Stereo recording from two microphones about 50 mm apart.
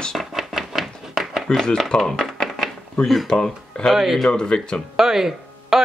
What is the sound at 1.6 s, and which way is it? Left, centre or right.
Speech, centre.